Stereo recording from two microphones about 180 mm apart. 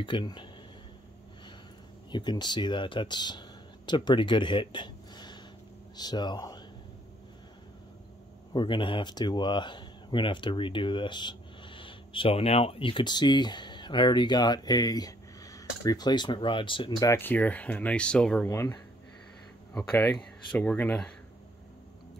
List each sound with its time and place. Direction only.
0.0 s speech: 25° left (ahead or behind)
2.0 s speech: 25° left (ahead or behind)
8.5 s speech: 25° left (ahead or behind)
17.1 s speech: 10° left (ahead or behind)